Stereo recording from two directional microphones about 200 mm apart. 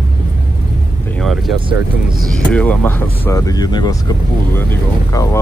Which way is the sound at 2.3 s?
5° left (ahead or behind).